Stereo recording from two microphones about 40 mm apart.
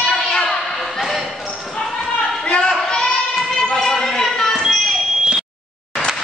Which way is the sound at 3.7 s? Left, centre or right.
Centre.